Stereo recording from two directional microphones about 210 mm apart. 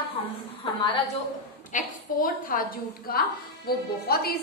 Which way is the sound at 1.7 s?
40° left (ahead or behind).